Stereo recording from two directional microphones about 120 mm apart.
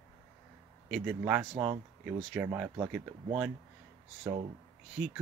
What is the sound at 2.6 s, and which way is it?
Speech, 20° right (ahead or behind).